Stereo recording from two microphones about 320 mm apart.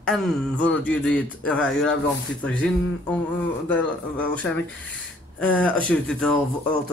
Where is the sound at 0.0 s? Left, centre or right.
Centre.